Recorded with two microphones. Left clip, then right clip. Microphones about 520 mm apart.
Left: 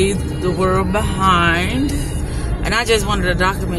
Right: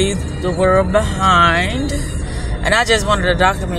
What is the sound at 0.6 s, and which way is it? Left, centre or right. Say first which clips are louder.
Speech: right 5 dB; left.